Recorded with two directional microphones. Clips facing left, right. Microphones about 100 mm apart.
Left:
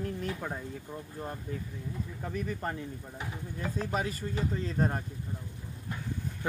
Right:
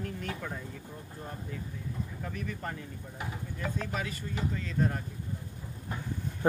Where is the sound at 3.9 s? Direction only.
40° left (ahead or behind).